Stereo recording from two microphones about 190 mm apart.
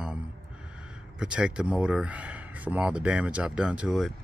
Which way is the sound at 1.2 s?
5° right (ahead or behind).